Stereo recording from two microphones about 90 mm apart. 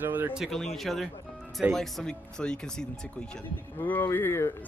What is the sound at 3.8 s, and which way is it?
Speech, 20° left (ahead or behind).